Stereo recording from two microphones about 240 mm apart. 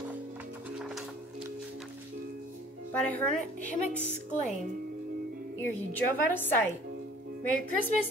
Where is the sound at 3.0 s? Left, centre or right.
Centre.